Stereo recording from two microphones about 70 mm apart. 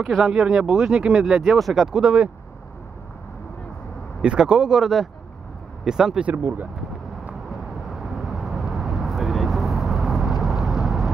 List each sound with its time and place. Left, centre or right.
0.1 s speech: centre
4.2 s speech: centre
6.2 s speech: right
7.9 s vehicle: centre